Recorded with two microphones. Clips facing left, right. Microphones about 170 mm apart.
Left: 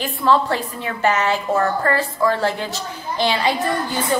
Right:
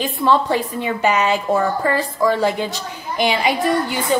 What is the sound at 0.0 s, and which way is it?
A woman's voice, 15° right (ahead or behind).